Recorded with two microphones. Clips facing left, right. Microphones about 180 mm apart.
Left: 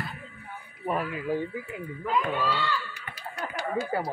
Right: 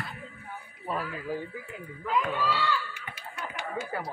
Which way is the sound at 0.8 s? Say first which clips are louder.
Left 4 dB; 15° left (ahead or behind).